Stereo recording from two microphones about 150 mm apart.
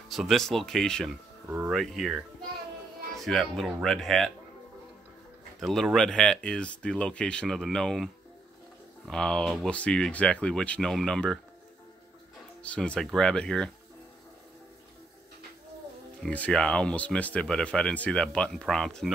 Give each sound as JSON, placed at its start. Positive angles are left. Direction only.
{"t": 0.1, "sound": "speech", "side_deg": 0}
{"t": 3.2, "sound": "speech", "side_deg": 0}
{"t": 5.6, "sound": "speech", "side_deg": 0}
{"t": 12.6, "sound": "speech", "side_deg": 10}
{"t": 16.2, "sound": "speech", "side_deg": 10}